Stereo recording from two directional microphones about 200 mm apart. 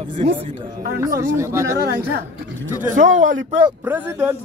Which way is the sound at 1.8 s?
50° right (ahead or behind).